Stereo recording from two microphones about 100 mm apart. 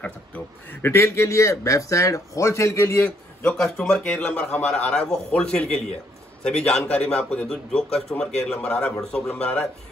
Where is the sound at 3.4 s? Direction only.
5° left (ahead or behind).